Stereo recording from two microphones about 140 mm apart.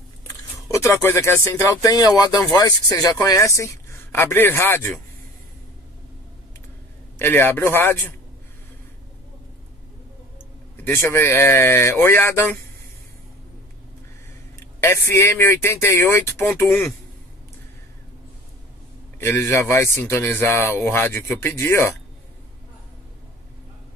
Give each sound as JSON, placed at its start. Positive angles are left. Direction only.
{"t": 0.7, "sound": "speech", "side_deg": 20}
{"t": 7.2, "sound": "speech", "side_deg": 15}
{"t": 10.8, "sound": "speech", "side_deg": 15}
{"t": 14.8, "sound": "speech", "side_deg": 20}
{"t": 19.1, "sound": "speech", "side_deg": 15}